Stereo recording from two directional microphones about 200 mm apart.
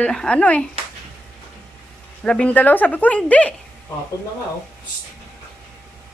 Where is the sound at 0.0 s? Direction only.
5° left (ahead or behind).